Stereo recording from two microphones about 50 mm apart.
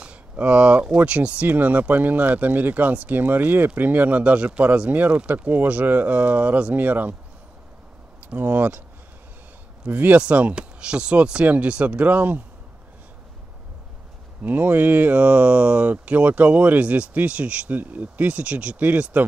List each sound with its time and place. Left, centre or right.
0.0 s a sound: right
0.9 s speech: right
8.3 s speech: right
9.8 s speech: right
10.2 s speech: right
14.4 s speech: right